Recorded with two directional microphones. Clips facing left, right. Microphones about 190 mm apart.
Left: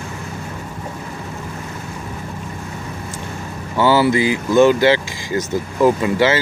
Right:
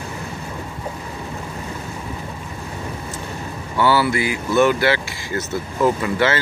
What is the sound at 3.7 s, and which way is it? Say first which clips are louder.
Speech: left 3 dB; 15° left (ahead or behind).